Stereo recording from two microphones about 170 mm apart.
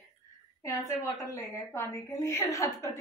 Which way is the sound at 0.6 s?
15° left (ahead or behind).